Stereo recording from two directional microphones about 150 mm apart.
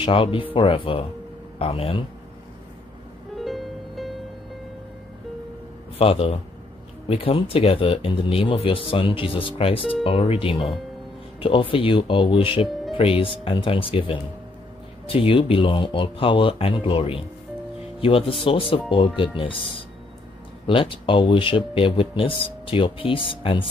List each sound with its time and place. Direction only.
0.0 s speech: 35° left (ahead or behind)
3.3 s music: centre (ahead or behind)
5.9 s speech: 40° left (ahead or behind)
18.4 s speech: 35° left (ahead or behind)
20.6 s speech: 35° left (ahead or behind)